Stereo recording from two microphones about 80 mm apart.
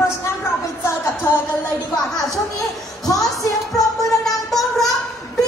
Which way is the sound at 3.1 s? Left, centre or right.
Left.